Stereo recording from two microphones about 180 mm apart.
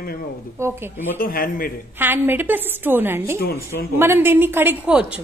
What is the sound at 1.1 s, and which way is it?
Speech, 50° left (ahead or behind).